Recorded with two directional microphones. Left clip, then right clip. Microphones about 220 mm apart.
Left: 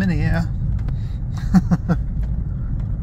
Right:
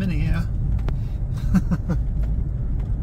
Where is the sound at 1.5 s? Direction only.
25° left (ahead or behind).